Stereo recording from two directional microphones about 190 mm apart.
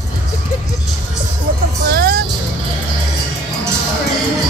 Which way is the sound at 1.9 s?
50° right (ahead or behind).